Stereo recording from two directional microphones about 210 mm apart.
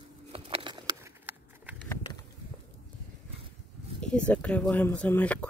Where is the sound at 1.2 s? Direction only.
5° right (ahead or behind).